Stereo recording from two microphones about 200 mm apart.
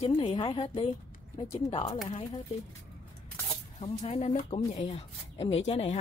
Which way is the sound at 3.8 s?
30° left (ahead or behind).